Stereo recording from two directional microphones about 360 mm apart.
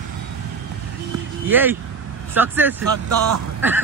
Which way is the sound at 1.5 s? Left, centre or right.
Centre.